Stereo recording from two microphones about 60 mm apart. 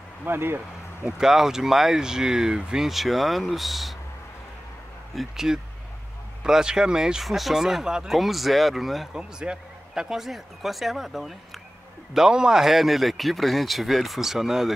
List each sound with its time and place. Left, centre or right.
0.2 s speech: right
1.1 s speech: centre
5.1 s speech: centre
9.1 s speech: centre